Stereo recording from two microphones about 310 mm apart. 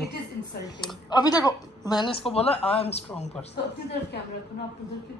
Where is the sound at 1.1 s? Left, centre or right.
Centre.